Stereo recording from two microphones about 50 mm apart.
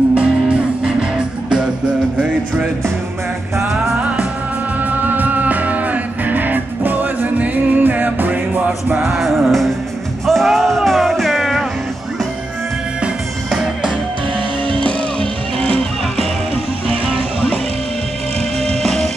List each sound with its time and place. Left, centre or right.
0.1 s music: right
4.8 s music: right
9.0 s music: centre
13.5 s music: centre
17.1 s music: centre
18.6 s music: centre